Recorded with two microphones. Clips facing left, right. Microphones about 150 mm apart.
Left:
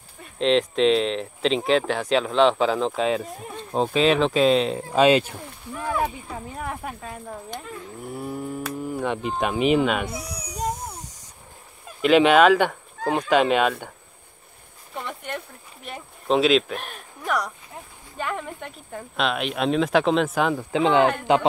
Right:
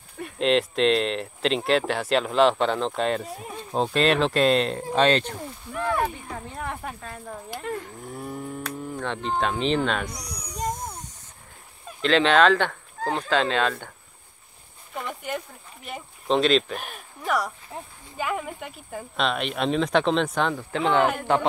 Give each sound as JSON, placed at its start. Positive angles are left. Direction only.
{"t": 0.4, "sound": "speech", "side_deg": 0}
{"t": 7.6, "sound": "speech", "side_deg": -65}
{"t": 8.0, "sound": "cattle", "side_deg": 5}
{"t": 12.0, "sound": "speech", "side_deg": 10}
{"t": 13.3, "sound": "cattle", "side_deg": 15}
{"t": 15.0, "sound": "speech", "side_deg": 0}
{"t": 20.3, "sound": "cattle", "side_deg": 10}